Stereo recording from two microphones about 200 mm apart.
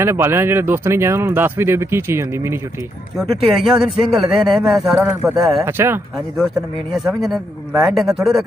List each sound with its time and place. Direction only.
0.0 s speech: 15° right (ahead or behind)
5.1 s speech: 15° right (ahead or behind)
5.4 s speech: centre (ahead or behind)
5.7 s speech: 10° right (ahead or behind)
6.3 s speech: centre (ahead or behind)